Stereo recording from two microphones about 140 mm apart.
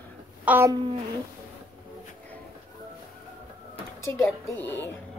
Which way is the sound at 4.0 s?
20° left (ahead or behind).